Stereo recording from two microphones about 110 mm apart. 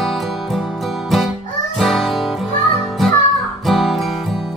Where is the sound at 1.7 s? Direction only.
Centre (ahead or behind).